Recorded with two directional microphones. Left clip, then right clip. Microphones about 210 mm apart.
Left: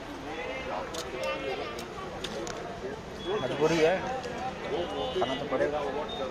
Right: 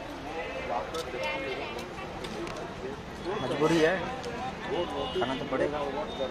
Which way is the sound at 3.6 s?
10° right (ahead or behind).